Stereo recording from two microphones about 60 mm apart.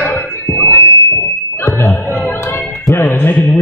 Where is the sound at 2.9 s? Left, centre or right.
Left.